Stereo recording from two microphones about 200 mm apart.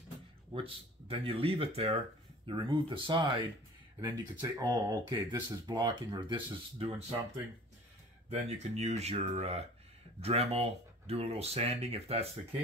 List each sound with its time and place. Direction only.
0.5 s speech: 25° right (ahead or behind)
8.3 s speech: 35° right (ahead or behind)